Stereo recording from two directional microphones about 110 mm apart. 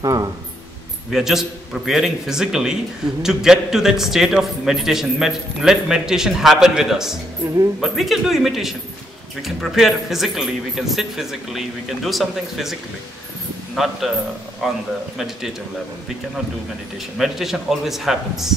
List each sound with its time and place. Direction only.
0.0 s speech: 35° right (ahead or behind)
1.1 s a man's voice: 5° right (ahead or behind)
13.8 s a man's voice: centre (ahead or behind)
17.2 s a man's voice: 5° right (ahead or behind)